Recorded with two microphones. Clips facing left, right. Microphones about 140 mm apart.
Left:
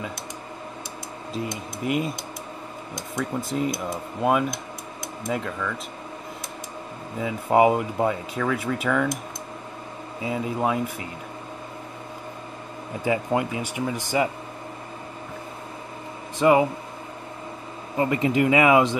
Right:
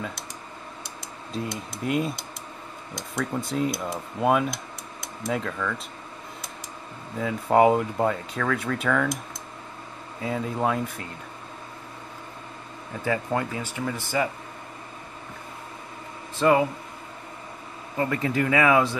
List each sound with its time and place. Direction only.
1.3 s speech: centre (ahead or behind)
7.2 s speech: 5° left (ahead or behind)
10.2 s speech: 5° left (ahead or behind)
13.0 s speech: 15° left (ahead or behind)
16.3 s speech: 15° left (ahead or behind)
17.9 s speech: 15° left (ahead or behind)